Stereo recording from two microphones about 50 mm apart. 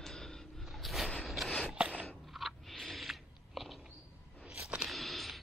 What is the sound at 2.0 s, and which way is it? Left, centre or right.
Chewing, centre.